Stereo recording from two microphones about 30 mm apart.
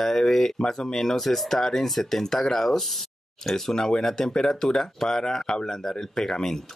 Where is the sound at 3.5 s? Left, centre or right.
Centre.